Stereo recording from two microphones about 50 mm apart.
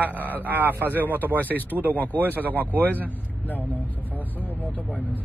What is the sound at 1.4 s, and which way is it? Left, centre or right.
Speech, left.